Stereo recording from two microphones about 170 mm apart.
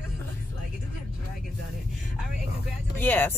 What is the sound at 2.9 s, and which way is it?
Speech, 10° left (ahead or behind).